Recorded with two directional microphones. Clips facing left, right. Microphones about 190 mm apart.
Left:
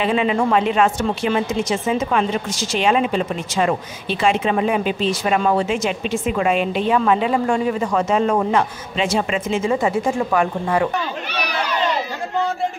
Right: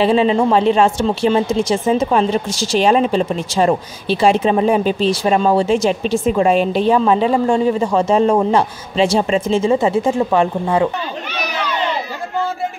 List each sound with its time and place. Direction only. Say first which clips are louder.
0.0 s a woman's voice: right 5 dB; 30° right (ahead or behind)